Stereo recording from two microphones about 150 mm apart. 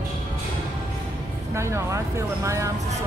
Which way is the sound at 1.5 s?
20° right (ahead or behind).